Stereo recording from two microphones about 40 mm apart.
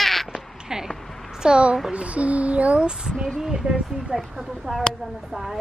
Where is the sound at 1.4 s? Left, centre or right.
Right; by 4.8 s centre.